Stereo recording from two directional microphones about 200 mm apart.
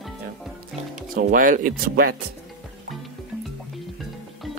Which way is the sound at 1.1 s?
45° right (ahead or behind).